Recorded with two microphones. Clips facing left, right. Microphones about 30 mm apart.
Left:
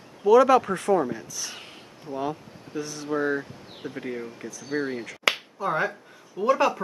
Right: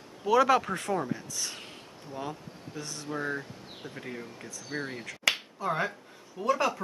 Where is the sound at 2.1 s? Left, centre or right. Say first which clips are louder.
Left 8 dB; centre.